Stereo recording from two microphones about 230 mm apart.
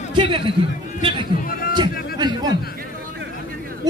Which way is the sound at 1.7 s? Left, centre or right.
Centre.